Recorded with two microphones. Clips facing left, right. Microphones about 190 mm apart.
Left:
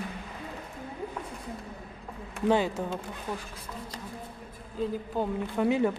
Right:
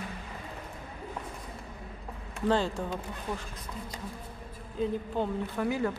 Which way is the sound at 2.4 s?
15° left (ahead or behind).